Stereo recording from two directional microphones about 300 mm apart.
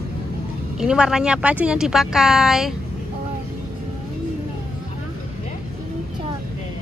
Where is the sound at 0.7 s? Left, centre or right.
Centre.